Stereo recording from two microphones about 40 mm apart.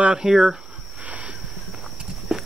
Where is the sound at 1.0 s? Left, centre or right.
Right.